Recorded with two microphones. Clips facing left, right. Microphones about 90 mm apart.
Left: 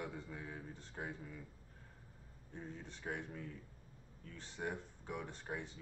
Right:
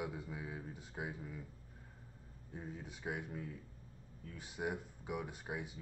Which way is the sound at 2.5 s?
10° right (ahead or behind).